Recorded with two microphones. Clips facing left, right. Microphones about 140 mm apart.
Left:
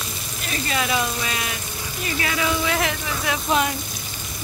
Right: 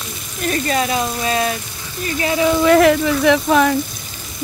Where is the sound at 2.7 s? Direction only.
60° right (ahead or behind); by 3.8 s 80° right.